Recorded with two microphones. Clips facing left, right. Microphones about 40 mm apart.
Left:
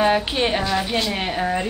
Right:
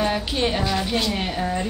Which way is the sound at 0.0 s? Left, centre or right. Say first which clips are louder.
Left 4 dB; left.